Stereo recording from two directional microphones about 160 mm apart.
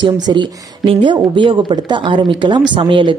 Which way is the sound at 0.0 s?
30° right (ahead or behind).